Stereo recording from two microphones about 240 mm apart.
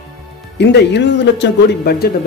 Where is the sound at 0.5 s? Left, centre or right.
Left.